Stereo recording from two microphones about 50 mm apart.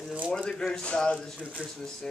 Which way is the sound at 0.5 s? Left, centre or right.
Centre.